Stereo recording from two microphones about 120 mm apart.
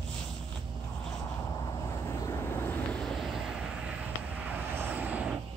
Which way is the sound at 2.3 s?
20° left (ahead or behind).